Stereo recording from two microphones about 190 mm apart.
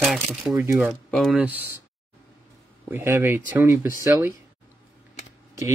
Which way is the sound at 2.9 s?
10° right (ahead or behind).